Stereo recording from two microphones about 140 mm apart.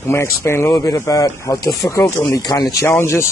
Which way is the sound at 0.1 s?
20° left (ahead or behind).